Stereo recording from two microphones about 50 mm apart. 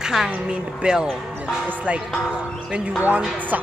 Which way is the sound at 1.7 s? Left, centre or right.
Right.